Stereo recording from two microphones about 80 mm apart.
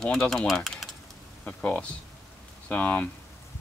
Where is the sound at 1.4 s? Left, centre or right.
Centre.